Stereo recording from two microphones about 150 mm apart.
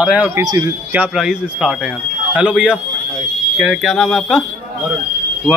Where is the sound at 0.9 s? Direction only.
5° right (ahead or behind).